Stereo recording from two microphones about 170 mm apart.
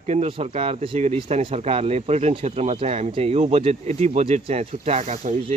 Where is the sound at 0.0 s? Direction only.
40° right (ahead or behind).